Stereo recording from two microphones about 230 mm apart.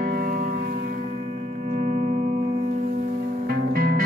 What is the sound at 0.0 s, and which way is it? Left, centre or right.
Music, right.